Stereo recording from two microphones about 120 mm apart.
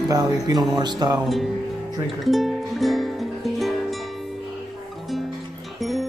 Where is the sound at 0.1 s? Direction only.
30° right (ahead or behind).